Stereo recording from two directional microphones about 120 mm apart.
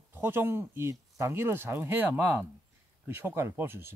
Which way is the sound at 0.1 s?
20° right (ahead or behind).